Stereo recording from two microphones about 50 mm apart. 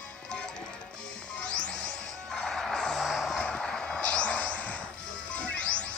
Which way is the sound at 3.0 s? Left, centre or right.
Centre.